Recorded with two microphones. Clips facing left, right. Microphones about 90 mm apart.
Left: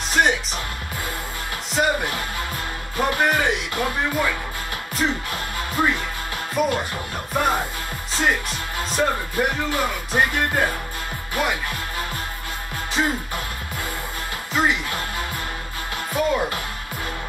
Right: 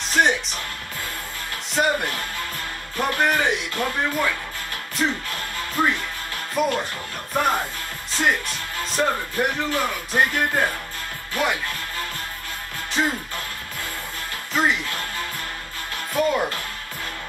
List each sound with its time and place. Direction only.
0.1 s speech: centre (ahead or behind)
1.8 s music: centre (ahead or behind)
3.7 s speech: 10° left (ahead or behind)
5.0 s music: 5° left (ahead or behind)
6.6 s music: centre (ahead or behind)
13.0 s music: 5° left (ahead or behind)
14.5 s music: centre (ahead or behind)
14.9 s music: 15° left (ahead or behind)
16.1 s music: 5° left (ahead or behind)